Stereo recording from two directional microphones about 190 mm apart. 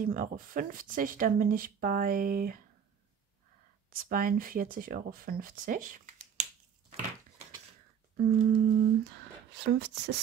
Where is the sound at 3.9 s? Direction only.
50° right (ahead or behind).